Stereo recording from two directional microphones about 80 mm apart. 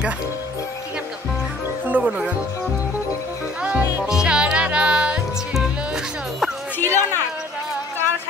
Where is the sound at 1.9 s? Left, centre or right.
Centre.